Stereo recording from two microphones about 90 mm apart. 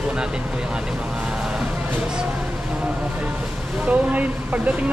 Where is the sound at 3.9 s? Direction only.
15° right (ahead or behind).